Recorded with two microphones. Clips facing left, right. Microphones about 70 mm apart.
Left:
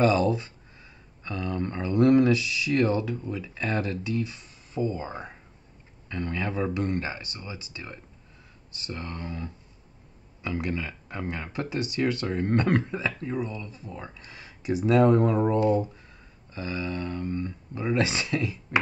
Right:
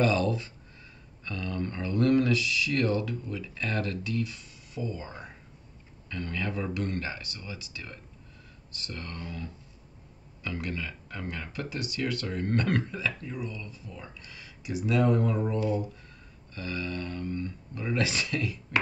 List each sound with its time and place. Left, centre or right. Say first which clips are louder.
0.0 s speech: left 4 dB; centre; by 15.8 s left
16.5 s speech: left 3 dB; centre